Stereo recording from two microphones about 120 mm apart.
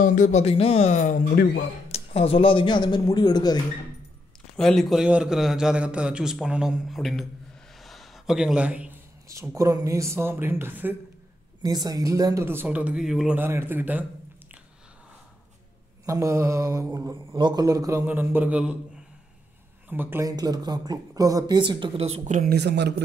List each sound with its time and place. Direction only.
0.0 s speech: 90° left
1.9 s speech: 55° left (ahead or behind); by 3.5 s 35° left (ahead or behind)
4.6 s a man's voice: centre (ahead or behind)
7.8 s gasp: centre (ahead or behind)
9.3 s speech: 25° right (ahead or behind)
11.6 s speech: 35° right (ahead or behind)
12.4 s a man's voice: 15° right (ahead or behind)
13.4 s a man's voice: 20° right (ahead or behind)
16.1 s speech: 25° right (ahead or behind)
17.3 s speech: 40° right (ahead or behind)
18.0 s a man's voice: 15° right (ahead or behind)
19.9 s a man's voice: 15° right (ahead or behind)
20.2 s speech: 35° right (ahead or behind)
22.0 s speech: 75° right (ahead or behind)